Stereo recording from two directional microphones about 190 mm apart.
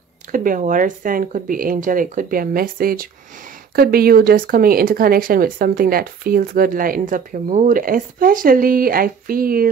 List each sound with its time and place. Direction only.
0.3 s speech: 45° right (ahead or behind)